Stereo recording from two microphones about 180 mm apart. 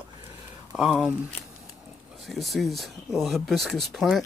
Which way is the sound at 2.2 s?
Centre (ahead or behind).